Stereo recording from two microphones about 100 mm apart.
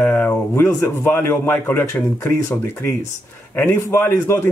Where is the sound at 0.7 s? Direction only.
25° left (ahead or behind).